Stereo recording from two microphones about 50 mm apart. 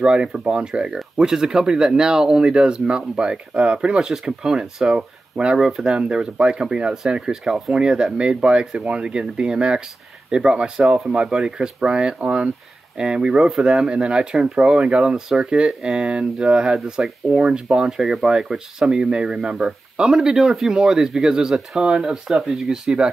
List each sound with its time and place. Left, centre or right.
0.0 s speech: centre